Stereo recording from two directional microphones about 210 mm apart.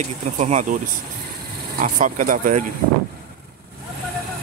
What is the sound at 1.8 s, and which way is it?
Speech, 40° right (ahead or behind).